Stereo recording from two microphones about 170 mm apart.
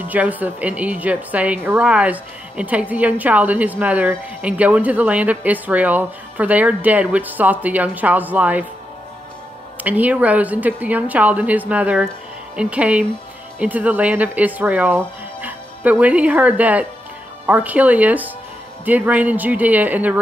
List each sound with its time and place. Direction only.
0.1 s a woman's voice: 10° right (ahead or behind)
9.8 s a woman's voice: 10° right (ahead or behind)